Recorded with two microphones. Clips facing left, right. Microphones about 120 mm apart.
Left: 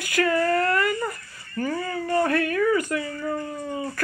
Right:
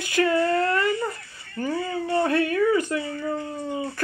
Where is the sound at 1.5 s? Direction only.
20° right (ahead or behind).